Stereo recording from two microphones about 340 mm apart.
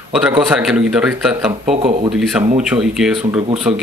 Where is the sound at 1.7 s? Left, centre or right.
Right.